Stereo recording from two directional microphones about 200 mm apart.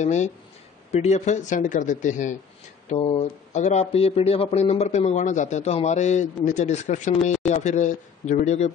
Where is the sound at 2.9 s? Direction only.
25° left (ahead or behind).